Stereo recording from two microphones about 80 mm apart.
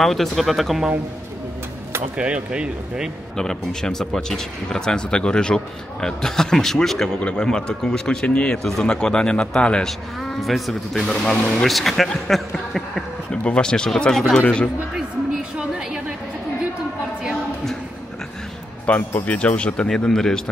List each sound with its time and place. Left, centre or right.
0.0 s speech: centre
2.1 s speech: centre
3.3 s speech: centre
14.4 s speech: centre
18.9 s speech: centre